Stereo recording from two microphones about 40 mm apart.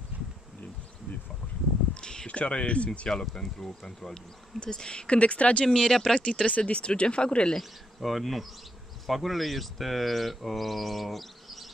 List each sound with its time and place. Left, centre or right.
2.0 s a sound: centre
2.2 s speech: left
3.1 s speech: centre
5.7 s speech: centre
6.1 s speech: left
8.0 s speech: centre